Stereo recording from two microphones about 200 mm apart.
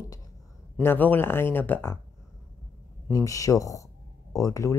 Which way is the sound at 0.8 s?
10° left (ahead or behind).